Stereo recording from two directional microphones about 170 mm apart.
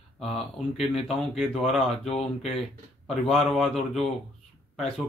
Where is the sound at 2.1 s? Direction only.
35° left (ahead or behind).